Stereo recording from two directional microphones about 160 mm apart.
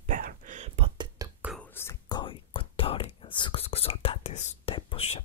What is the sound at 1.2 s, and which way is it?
Whispering, 20° right (ahead or behind).